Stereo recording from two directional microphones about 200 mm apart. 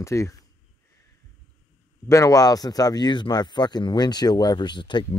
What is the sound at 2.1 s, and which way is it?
Speech, 15° left (ahead or behind).